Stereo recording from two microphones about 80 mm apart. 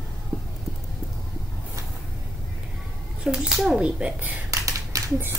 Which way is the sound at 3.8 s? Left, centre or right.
Centre.